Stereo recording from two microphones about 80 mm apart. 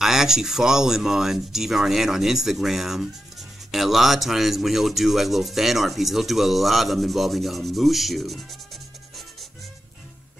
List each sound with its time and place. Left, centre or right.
0.0 s speech: centre